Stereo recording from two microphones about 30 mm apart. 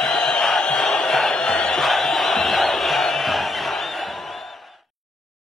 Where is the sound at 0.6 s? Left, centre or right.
Centre.